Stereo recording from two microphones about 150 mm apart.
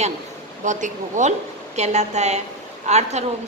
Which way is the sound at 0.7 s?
55° right (ahead or behind).